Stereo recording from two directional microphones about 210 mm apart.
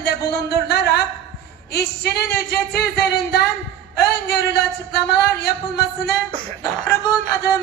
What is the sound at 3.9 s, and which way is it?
Speech, 50° left (ahead or behind).